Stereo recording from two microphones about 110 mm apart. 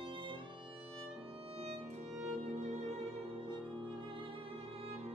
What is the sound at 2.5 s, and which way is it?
Music, 90° right.